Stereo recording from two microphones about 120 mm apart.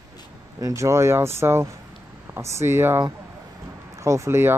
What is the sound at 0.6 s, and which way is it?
Speech, 25° right (ahead or behind).